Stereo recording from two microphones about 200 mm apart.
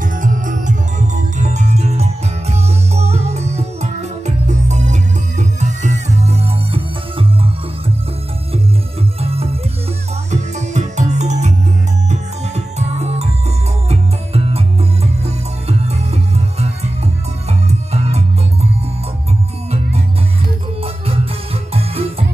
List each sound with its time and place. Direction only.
0.0 s music: 40° right (ahead or behind)
9.2 s music: 30° right (ahead or behind)
15.9 s music: 30° right (ahead or behind)
21.7 s music: 30° right (ahead or behind)